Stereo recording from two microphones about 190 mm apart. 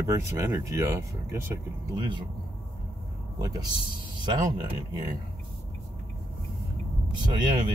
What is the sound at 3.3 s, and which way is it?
A man's voice, 20° right (ahead or behind).